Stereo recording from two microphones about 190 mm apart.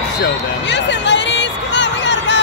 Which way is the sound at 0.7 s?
70° left (ahead or behind).